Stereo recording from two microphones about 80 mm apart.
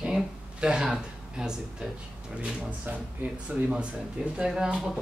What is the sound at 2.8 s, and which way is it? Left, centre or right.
Speech, right.